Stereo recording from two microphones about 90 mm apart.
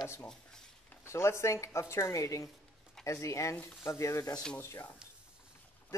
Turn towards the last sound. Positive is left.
turn(degrees=25)  # may be behind; listen again after turning